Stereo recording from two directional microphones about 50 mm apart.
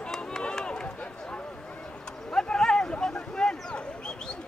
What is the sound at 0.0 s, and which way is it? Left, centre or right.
Run, centre.